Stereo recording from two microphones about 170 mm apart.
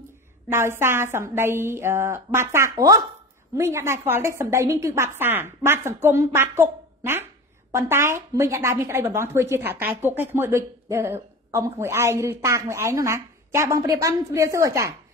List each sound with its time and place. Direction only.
0.5 s a woman's voice: 15° right (ahead or behind)